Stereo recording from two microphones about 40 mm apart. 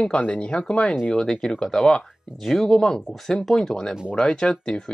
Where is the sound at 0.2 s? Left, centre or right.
Left; by 3.8 s centre.